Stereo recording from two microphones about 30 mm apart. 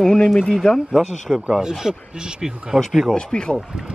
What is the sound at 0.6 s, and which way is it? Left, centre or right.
Speech, left.